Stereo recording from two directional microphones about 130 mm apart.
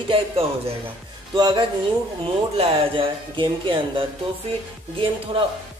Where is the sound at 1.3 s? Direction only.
35° right (ahead or behind).